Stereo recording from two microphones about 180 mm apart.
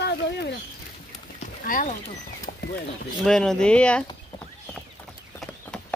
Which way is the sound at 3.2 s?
5° left (ahead or behind).